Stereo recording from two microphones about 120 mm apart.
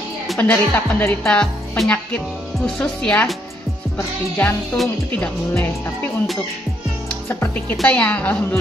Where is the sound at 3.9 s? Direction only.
25° left (ahead or behind).